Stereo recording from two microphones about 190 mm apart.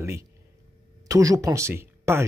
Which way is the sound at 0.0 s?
15° right (ahead or behind).